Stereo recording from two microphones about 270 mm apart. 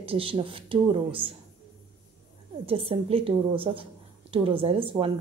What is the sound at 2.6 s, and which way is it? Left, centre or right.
Speech, right.